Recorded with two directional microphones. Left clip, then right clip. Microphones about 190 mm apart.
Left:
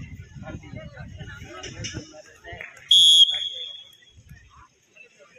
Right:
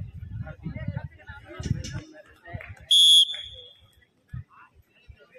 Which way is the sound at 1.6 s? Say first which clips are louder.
Left 3 dB; 25° right (ahead or behind).